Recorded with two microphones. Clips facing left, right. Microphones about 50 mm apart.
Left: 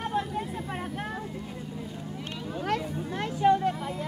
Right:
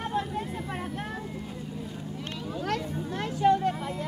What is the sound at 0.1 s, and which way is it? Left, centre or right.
Vehicle, centre.